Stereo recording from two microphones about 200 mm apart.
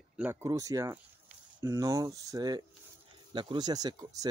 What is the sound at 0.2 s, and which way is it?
Speech, 15° right (ahead or behind).